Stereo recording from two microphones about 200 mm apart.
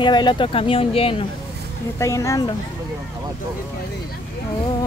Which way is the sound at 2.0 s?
15° left (ahead or behind).